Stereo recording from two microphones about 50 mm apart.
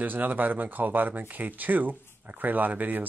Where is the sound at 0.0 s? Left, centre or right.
Right.